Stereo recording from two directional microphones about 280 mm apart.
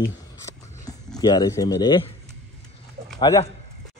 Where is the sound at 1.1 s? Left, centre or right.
Centre.